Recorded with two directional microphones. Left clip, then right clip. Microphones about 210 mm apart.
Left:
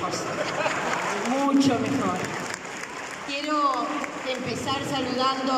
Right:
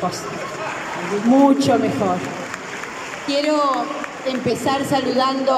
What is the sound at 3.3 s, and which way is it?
Speech, 35° right (ahead or behind).